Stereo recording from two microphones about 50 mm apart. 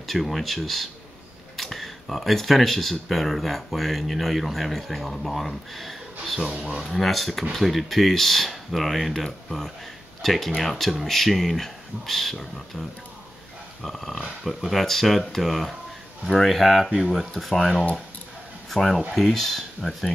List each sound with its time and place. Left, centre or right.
0.0 s speech: centre
13.8 s speech: centre